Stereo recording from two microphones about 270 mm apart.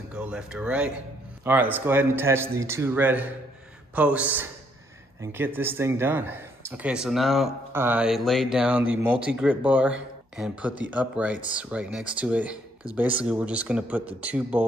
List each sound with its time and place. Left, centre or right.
0.1 s a man's voice: centre